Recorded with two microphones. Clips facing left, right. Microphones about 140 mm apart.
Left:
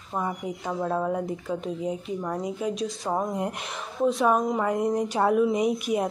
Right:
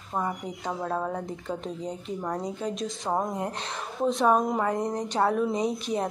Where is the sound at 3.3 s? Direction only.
15° left (ahead or behind).